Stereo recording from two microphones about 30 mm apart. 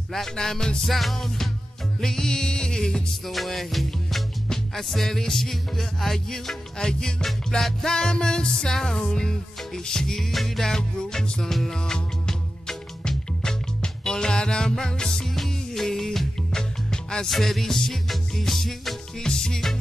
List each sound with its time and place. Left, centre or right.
0.1 s music: centre
3.3 s music: centre
6.8 s music: left
10.3 s music: centre
10.6 s music: centre
15.2 s music: centre
16.9 s music: left
17.3 s music: centre
19.1 s music: left